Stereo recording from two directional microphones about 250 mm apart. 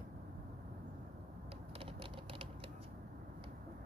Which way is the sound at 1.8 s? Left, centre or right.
Right.